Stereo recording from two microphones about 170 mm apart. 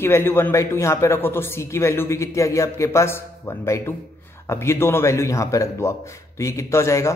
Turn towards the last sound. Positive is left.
turn(degrees=15)  # may be behind; listen again after turning